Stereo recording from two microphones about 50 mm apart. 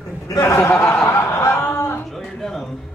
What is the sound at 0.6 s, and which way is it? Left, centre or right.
Speech, left.